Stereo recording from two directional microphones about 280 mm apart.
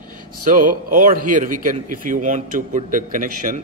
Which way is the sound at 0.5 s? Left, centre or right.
Right.